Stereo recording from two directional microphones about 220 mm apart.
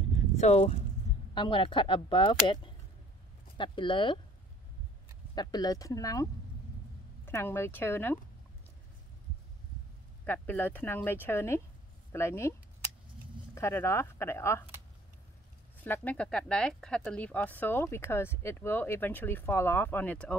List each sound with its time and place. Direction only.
0.4 s speech: 30° left (ahead or behind)
5.3 s speech: 20° left (ahead or behind)
7.2 s speech: 10° left (ahead or behind)
10.2 s speech: 10° left (ahead or behind)
13.6 s speech: 10° left (ahead or behind)
15.8 s speech: 10° left (ahead or behind)